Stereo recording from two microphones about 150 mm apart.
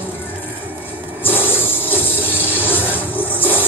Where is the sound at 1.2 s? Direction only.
15° left (ahead or behind).